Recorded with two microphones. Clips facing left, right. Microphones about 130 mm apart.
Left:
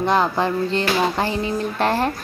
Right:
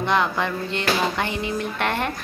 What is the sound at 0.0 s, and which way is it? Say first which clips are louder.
A woman's voice: left 3 dB; 35° left (ahead or behind).